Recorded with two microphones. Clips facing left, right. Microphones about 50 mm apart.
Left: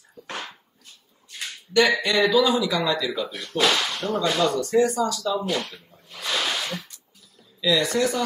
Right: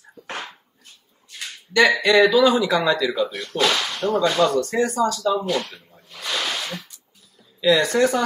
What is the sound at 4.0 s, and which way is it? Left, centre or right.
Speech, right.